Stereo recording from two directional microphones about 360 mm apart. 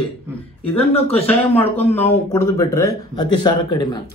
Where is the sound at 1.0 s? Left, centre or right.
Centre.